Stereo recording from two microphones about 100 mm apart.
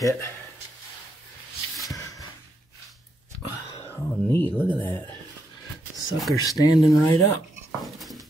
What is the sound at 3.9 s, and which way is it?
Speech, 20° left (ahead or behind).